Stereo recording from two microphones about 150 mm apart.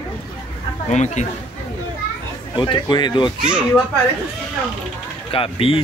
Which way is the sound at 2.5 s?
30° left (ahead or behind).